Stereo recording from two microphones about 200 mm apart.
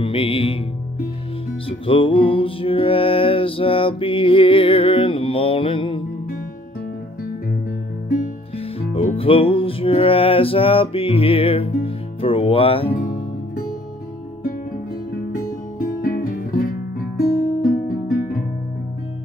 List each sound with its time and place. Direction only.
0.0 s music: 25° left (ahead or behind)
1.7 s music: 25° left (ahead or behind)
8.5 s music: 30° left (ahead or behind)
15.3 s music: 45° left (ahead or behind)